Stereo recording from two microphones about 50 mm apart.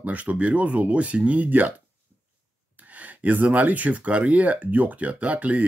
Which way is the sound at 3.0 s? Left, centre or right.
Right.